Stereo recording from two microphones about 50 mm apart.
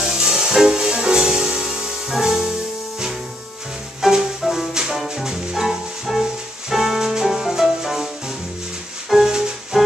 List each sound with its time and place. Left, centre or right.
0.0 s music: centre
4.0 s music: centre
9.1 s music: centre